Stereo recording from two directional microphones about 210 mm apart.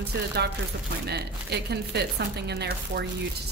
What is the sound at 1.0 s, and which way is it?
Speech, 50° right (ahead or behind).